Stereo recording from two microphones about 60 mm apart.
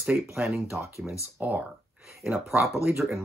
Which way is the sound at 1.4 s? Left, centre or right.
Right.